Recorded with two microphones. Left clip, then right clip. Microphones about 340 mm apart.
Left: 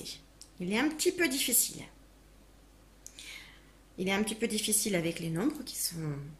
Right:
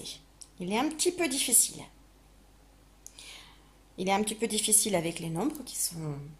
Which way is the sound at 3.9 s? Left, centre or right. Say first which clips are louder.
Right 3 dB; centre.